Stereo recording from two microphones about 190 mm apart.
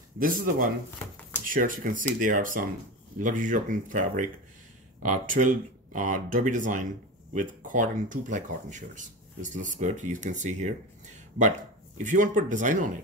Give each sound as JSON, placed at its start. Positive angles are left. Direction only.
{"t": 0.2, "sound": "speech", "side_deg": -45}